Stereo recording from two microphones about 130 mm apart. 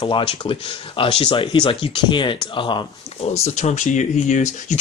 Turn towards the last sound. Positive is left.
turn(degrees=65)  # may be behind; listen again after turning